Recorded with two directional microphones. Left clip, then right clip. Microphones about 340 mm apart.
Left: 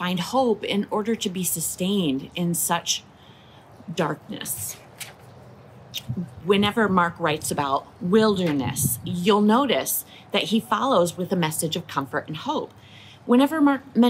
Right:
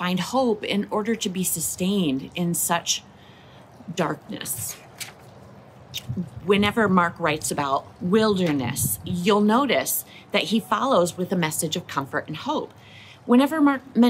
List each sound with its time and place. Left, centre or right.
0.0 s speech: centre